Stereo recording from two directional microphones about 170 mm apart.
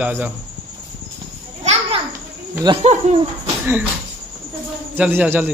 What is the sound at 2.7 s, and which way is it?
Speech, 25° right (ahead or behind).